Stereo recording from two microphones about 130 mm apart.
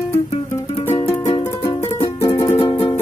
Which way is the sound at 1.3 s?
35° left (ahead or behind).